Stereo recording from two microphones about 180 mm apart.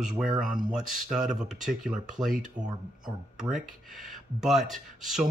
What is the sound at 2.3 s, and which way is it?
Speech, 45° right (ahead or behind).